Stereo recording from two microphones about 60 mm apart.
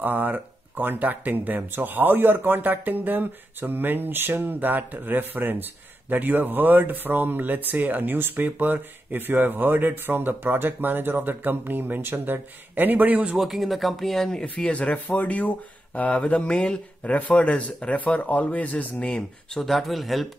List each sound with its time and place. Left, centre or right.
0.0 s speech: right
13.3 s speech: centre
14.6 s speech: left
19.5 s speech: centre